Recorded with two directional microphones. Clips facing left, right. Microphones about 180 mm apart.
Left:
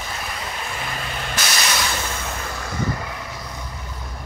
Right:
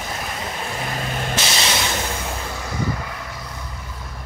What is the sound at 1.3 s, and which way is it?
Vehicle, 25° right (ahead or behind).